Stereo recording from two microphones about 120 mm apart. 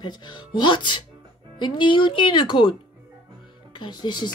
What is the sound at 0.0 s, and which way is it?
Music, 40° left (ahead or behind).